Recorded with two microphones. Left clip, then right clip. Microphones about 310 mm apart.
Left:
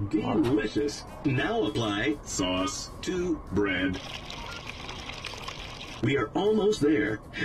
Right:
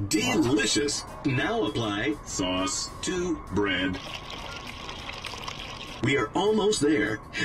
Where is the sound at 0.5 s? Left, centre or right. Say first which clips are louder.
Right 3 dB; right.